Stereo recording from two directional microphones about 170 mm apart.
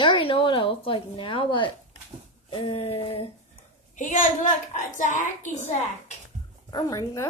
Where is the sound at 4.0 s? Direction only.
45° left (ahead or behind).